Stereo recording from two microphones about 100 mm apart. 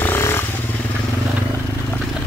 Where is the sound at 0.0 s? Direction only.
25° left (ahead or behind).